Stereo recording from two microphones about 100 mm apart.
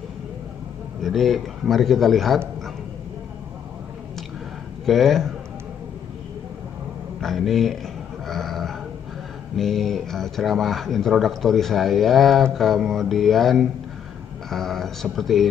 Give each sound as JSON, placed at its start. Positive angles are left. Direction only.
{"t": 1.0, "sound": "speech", "side_deg": 0}
{"t": 4.8, "sound": "speech", "side_deg": 0}
{"t": 7.2, "sound": "speech", "side_deg": 0}
{"t": 8.3, "sound": "a sound", "side_deg": 0}
{"t": 9.6, "sound": "speech", "side_deg": 5}